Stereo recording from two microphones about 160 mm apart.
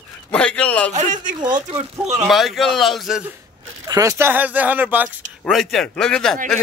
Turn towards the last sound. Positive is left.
turn(degrees=5)  # may be behind; listen again after turning